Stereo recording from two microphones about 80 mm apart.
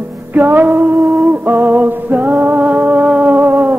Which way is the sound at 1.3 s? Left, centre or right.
Right.